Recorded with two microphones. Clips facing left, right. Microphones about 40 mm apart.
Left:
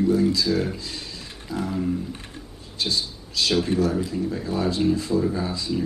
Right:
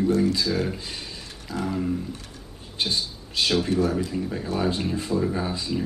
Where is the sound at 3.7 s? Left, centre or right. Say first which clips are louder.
Even; left.